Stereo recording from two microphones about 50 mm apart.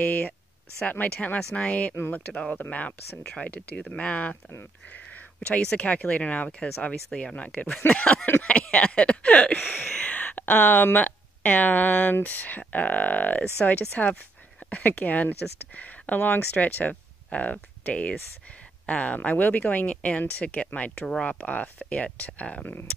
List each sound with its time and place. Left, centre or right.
0.8 s speech: left
4.9 s a sound: left
5.8 s speech: left